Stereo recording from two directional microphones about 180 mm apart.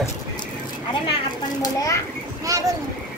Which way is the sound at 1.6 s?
20° left (ahead or behind).